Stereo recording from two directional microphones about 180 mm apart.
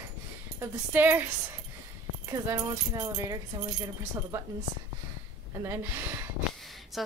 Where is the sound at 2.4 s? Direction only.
20° right (ahead or behind).